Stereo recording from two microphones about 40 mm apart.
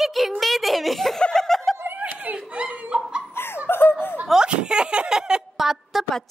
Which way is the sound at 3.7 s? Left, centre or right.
Left.